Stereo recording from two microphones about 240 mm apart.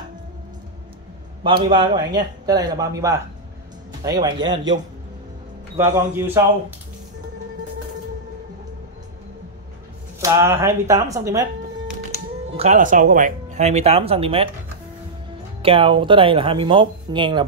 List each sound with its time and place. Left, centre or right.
1.4 s a man's voice: centre
5.8 s a man's voice: centre
10.2 s a man's voice: centre
12.5 s speech: right
15.6 s speech: right